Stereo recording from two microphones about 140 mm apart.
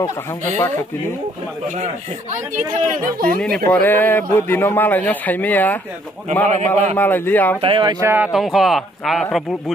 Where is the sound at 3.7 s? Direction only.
15° left (ahead or behind).